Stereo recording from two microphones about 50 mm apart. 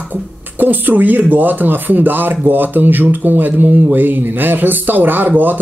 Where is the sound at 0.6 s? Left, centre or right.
Right.